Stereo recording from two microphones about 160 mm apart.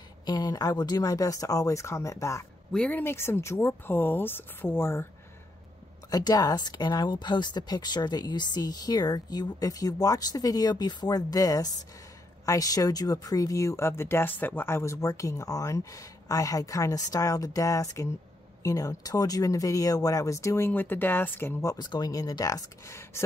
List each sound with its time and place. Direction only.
0.2 s speech: 25° left (ahead or behind)
6.0 s speech: 25° left (ahead or behind)